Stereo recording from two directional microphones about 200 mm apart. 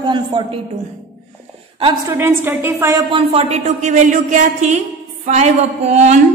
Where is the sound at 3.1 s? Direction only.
30° right (ahead or behind).